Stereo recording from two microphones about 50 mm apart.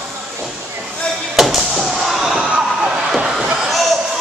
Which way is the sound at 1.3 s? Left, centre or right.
Centre.